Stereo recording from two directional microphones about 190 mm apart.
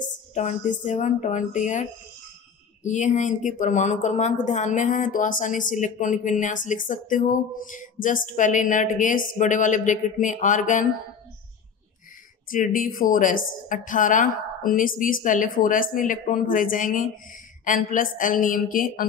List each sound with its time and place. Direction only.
0.3 s a woman's voice: 40° left (ahead or behind)
12.4 s a woman's voice: 45° left (ahead or behind)